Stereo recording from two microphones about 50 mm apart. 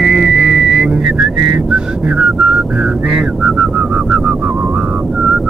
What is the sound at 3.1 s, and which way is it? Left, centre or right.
Vehicle, centre.